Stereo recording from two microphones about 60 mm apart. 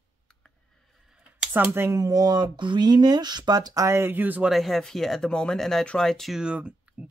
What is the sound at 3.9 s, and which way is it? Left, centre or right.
Speech, right.